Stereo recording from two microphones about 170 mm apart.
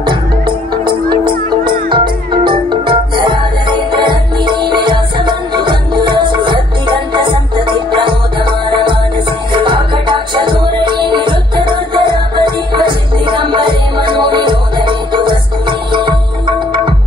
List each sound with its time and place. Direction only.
0.0 s music: 25° right (ahead or behind)